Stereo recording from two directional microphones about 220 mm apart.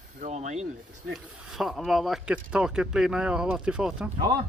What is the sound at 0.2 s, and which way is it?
Speech, 30° right (ahead or behind).